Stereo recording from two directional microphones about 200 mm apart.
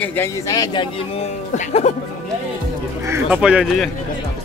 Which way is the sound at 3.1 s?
5° right (ahead or behind).